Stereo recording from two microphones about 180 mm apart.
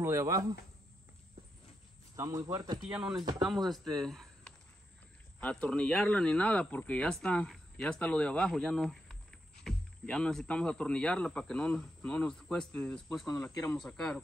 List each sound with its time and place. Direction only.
0.0 s speech: 15° right (ahead or behind)
2.1 s speech: 20° right (ahead or behind)
2.9 s speech: 5° right (ahead or behind)
5.4 s speech: 5° left (ahead or behind)
13.3 s speech: 15° left (ahead or behind)
13.7 s speech: 5° left (ahead or behind)